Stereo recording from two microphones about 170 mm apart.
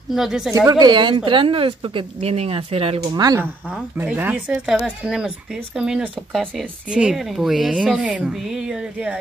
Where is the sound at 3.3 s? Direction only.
10° right (ahead or behind).